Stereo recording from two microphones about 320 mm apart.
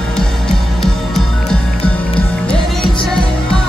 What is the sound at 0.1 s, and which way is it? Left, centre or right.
Music, centre.